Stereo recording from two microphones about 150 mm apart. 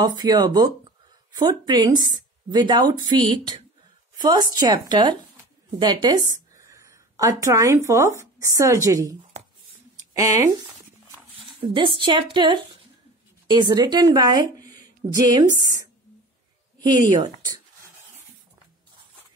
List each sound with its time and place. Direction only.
0.0 s a woman's voice: 25° right (ahead or behind)
6.6 s speech: 20° right (ahead or behind)
10.1 s speech: 20° right (ahead or behind)
11.6 s a woman's voice: 35° right (ahead or behind)